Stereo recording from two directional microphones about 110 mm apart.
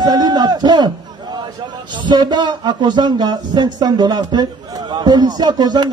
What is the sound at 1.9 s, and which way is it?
A man's voice, 45° right (ahead or behind).